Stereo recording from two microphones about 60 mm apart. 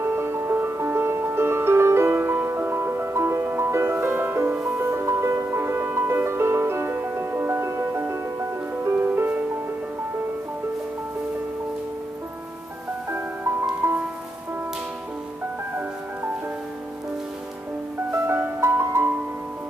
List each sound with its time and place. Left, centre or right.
0.0 s music: right
8.8 s music: right
13.1 s music: right
18.1 s music: right